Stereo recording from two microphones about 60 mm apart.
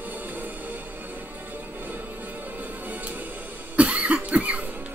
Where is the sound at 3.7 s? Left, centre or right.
Right.